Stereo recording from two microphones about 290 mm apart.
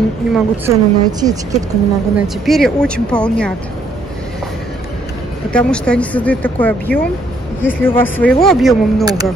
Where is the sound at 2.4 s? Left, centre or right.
Centre.